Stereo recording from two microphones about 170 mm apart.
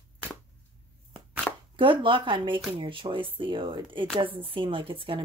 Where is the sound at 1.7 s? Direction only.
30° right (ahead or behind).